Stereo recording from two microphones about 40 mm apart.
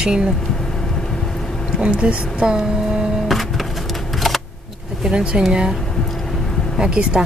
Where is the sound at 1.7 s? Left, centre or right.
Right.